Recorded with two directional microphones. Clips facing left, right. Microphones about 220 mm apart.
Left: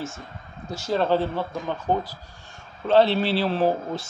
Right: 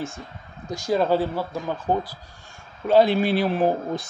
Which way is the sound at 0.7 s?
15° right (ahead or behind).